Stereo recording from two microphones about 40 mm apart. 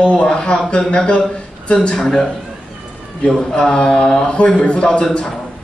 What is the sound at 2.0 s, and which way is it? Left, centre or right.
Speech, centre.